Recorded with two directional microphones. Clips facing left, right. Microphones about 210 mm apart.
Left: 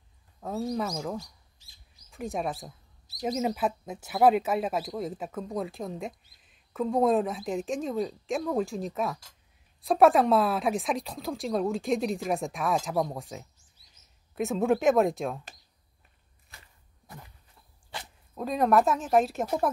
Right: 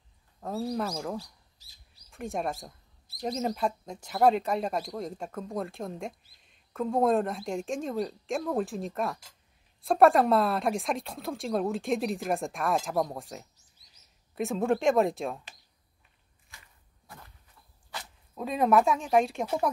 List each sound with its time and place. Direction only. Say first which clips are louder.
0.4 s speech: left 1 dB; centre (ahead or behind)
1.6 s bird: left 1 dB; 40° right (ahead or behind)
2.0 s speech: left 1 dB; centre (ahead or behind)
18.3 s speech: even; centre (ahead or behind)